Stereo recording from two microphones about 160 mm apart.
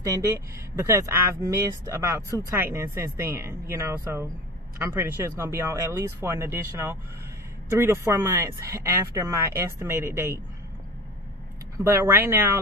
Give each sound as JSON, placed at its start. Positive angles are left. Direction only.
{"t": 0.0, "sound": "speech", "side_deg": -20}
{"t": 11.8, "sound": "speech", "side_deg": -15}